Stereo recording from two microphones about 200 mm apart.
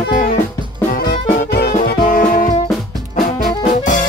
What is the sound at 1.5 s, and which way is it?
Music, 50° left (ahead or behind).